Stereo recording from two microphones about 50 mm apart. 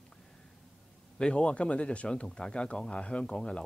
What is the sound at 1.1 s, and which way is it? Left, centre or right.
Speech, left.